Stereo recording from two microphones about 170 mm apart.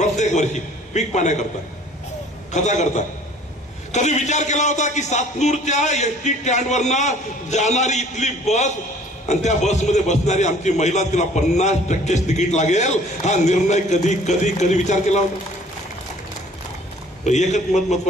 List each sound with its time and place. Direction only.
0.0 s a man's voice: 45° left (ahead or behind)
2.5 s a man's voice: 45° left (ahead or behind)
17.2 s a man's voice: 45° left (ahead or behind)